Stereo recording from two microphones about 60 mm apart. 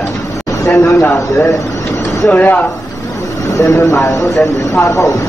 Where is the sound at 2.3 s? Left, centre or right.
Left.